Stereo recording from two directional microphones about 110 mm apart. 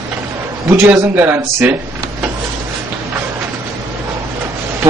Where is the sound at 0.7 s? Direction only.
20° right (ahead or behind).